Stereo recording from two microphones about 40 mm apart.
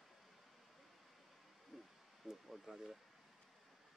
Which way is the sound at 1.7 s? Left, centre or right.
Centre.